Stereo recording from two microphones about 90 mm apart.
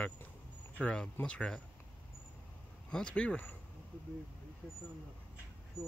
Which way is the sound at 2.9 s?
10° left (ahead or behind).